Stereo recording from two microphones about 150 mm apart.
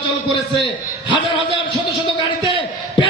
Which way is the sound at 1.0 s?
35° left (ahead or behind).